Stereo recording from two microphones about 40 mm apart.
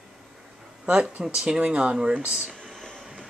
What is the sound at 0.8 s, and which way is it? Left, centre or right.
Speech, right.